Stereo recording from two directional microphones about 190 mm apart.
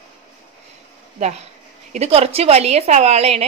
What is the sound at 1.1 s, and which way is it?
A woman's voice, 35° right (ahead or behind).